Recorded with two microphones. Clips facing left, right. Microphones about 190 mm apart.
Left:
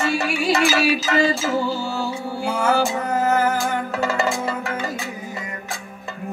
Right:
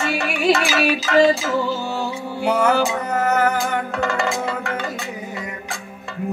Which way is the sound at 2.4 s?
60° right (ahead or behind).